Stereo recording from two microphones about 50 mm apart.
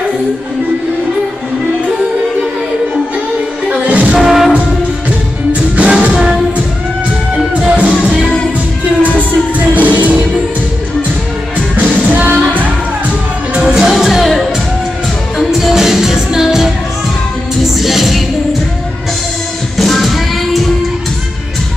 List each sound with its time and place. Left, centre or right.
3.6 s music: right
4.2 s music: centre
5.5 s music: right
7.6 s music: right
9.8 s music: right
11.7 s music: right
13.7 s music: centre
15.5 s music: centre
17.7 s music: centre
19.8 s music: centre